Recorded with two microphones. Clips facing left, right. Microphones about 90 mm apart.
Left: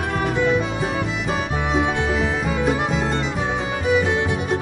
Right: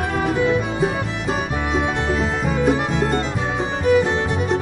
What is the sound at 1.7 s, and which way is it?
Music, centre (ahead or behind).